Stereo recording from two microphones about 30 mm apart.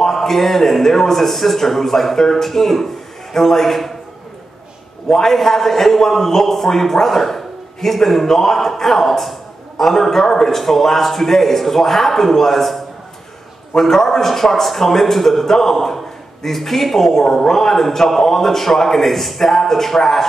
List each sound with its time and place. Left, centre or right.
0.0 s a man's voice: centre
5.0 s a man's voice: left
5.3 s a man's voice: centre
13.7 s a man's voice: centre